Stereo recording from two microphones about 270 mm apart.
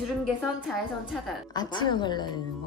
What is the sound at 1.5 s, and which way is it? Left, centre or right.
Speech, centre.